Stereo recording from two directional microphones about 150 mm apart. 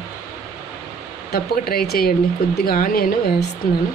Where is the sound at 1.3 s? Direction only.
90° left.